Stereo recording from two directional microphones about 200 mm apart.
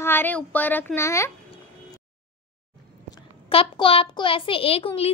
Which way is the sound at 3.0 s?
25° left (ahead or behind).